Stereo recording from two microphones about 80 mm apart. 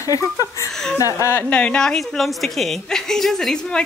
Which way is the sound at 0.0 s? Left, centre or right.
Left.